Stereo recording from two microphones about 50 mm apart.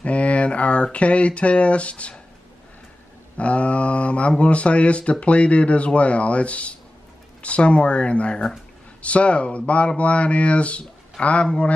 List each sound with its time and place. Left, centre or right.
0.0 s speech: left
3.3 s speech: left